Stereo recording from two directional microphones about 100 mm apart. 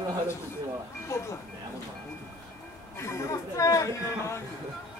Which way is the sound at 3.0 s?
30° left (ahead or behind).